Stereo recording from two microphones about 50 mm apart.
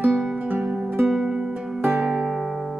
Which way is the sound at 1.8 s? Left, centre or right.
Centre.